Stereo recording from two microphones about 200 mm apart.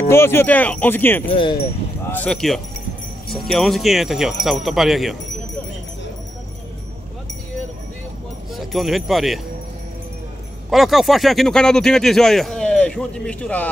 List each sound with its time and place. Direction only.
0.1 s speech: 10° left (ahead or behind)
1.3 s speech: 25° left (ahead or behind)
2.1 s speech: 5° left (ahead or behind)
8.5 s speech: centre (ahead or behind)
10.7 s speech: centre (ahead or behind)